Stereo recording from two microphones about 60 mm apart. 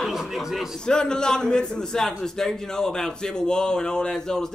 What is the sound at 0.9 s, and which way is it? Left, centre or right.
A man's voice, centre.